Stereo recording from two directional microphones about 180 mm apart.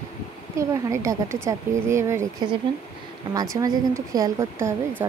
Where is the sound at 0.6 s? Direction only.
15° right (ahead or behind).